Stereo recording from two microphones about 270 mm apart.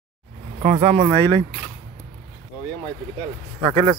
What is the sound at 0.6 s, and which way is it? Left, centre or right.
Speech, right.